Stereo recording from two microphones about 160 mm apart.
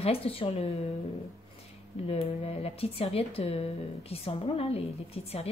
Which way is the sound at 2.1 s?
40° left (ahead or behind).